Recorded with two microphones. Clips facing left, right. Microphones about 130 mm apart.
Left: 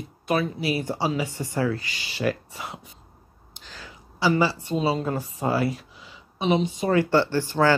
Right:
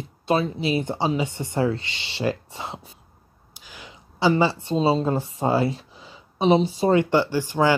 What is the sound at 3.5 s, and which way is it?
A woman's voice, 10° right (ahead or behind).